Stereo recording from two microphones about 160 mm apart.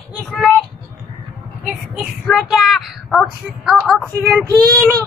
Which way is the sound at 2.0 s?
Centre (ahead or behind).